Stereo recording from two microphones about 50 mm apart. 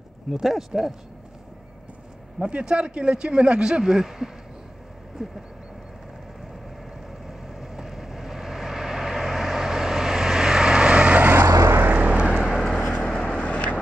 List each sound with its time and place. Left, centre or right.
0.3 s speech: centre
2.3 s a man's voice: centre
3.8 s speech: centre
7.2 s vehicle: centre; by 12.3 s right
12.3 s vehicle: centre
12.5 s vehicle: centre; by 13.7 s left